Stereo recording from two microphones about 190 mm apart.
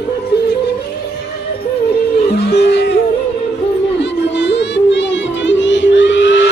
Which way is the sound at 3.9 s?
65° left (ahead or behind).